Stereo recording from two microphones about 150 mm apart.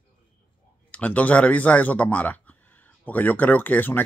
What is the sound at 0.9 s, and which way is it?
Speech, 10° left (ahead or behind).